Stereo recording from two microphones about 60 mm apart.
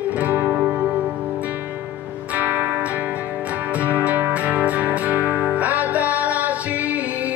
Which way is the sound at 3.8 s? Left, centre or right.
Right.